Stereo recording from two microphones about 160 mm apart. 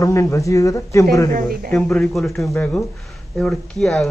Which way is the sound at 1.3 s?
65° right (ahead or behind).